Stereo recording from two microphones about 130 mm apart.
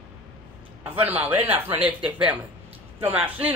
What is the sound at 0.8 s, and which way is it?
Speech, 15° right (ahead or behind).